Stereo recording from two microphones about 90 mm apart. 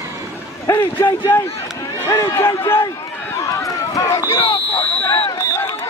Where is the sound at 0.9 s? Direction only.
20° left (ahead or behind).